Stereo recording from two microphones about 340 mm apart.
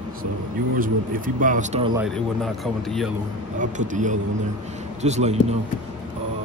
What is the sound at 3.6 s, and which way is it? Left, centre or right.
Speech, right.